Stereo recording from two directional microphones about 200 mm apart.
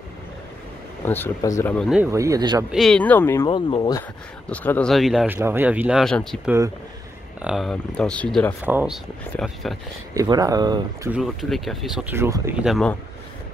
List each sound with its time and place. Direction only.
1.0 s speech: 10° left (ahead or behind)
1.9 s speech: 10° right (ahead or behind)
2.7 s speech: centre (ahead or behind)
3.4 s speech: 25° left (ahead or behind)
4.5 s speech: 5° left (ahead or behind)
8.6 s speech: 5° right (ahead or behind)
10.1 s speech: 20° right (ahead or behind)
11.1 s speech: centre (ahead or behind)
12.6 s speech: centre (ahead or behind)